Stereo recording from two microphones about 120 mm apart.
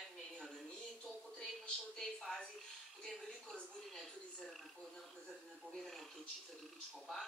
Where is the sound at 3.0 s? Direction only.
5° left (ahead or behind).